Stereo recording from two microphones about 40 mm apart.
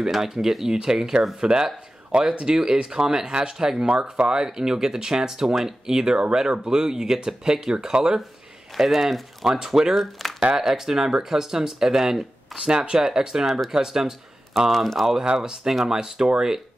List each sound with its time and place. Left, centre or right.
0.1 s speech: centre
8.7 s speech: centre
9.5 s speech: centre
10.2 s a sound: centre
10.6 s speech: centre
12.5 s speech: right
14.9 s speech: centre
15.4 s speech: centre